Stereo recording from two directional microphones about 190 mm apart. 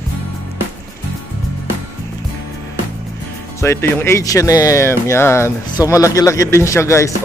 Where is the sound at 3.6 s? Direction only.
15° left (ahead or behind).